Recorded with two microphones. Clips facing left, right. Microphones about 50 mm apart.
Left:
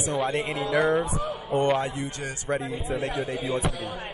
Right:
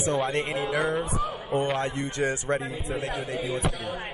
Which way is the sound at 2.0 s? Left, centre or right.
Right.